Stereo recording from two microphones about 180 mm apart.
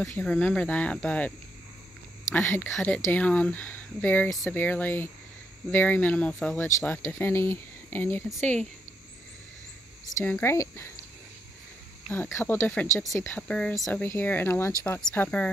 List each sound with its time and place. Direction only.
0.1 s speech: 5° left (ahead or behind)
10.1 s speech: 10° left (ahead or behind)
12.1 s speech: 15° left (ahead or behind)